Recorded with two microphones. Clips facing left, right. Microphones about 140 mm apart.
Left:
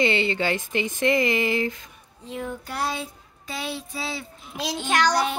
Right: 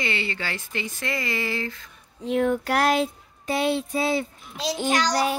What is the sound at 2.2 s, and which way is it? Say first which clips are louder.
A child's voice: right 10 dB; 70° right (ahead or behind).